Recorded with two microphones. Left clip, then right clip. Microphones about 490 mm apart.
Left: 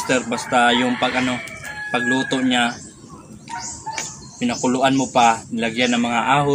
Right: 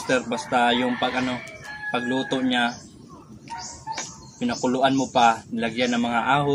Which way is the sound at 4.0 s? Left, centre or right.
Right.